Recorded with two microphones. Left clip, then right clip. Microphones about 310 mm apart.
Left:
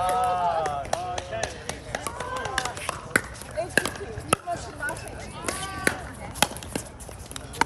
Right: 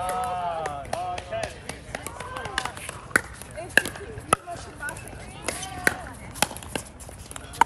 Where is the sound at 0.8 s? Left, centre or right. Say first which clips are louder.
Left 1 dB; left.